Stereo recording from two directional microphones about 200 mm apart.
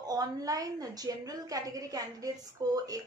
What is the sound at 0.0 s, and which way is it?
A woman's voice, 20° right (ahead or behind).